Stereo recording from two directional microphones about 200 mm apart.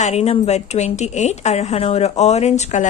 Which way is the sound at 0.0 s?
30° left (ahead or behind).